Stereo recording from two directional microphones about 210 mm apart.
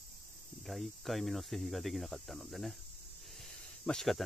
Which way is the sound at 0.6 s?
Centre (ahead or behind).